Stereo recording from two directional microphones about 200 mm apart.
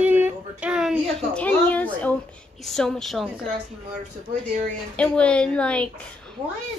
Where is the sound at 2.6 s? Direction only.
Centre (ahead or behind).